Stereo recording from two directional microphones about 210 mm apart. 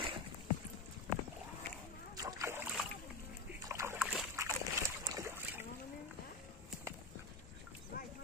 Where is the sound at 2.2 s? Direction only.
15° right (ahead or behind).